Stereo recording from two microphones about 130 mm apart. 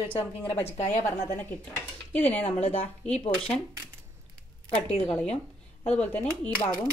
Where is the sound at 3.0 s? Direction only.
5° left (ahead or behind).